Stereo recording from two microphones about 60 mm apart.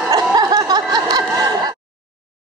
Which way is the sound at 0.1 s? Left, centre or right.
Right.